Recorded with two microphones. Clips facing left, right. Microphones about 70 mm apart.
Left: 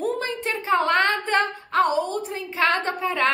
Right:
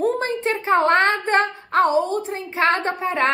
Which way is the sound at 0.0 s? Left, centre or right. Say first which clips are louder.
Right 5 dB; right.